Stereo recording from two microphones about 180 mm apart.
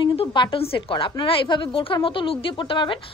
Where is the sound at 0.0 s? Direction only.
30° left (ahead or behind).